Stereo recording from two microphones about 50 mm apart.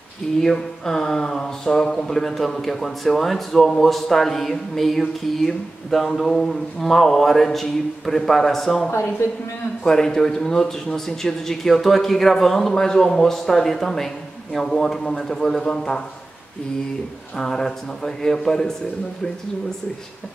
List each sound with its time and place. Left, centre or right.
0.4 s a man's voice: centre
9.8 s a man's voice: centre
17.4 s a man's voice: centre